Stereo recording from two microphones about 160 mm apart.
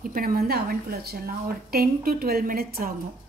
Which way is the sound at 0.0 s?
65° right (ahead or behind).